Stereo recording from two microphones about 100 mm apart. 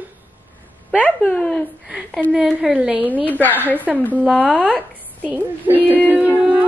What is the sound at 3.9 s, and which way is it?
Speech, 5° right (ahead or behind).